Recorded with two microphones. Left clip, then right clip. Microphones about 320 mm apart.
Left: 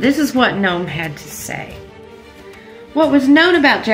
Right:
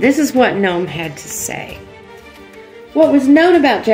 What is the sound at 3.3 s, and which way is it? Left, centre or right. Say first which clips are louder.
Speech: left 1 dB; centre.